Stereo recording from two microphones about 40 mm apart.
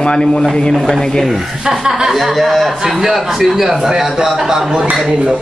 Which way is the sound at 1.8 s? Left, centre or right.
Centre.